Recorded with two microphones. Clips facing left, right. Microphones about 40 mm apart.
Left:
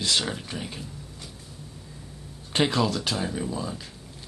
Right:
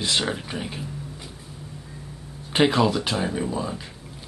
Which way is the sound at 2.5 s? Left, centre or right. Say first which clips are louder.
Right 4 dB; centre.